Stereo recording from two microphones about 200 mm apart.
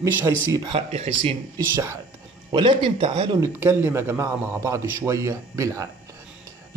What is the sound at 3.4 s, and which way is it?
Speech, 10° right (ahead or behind).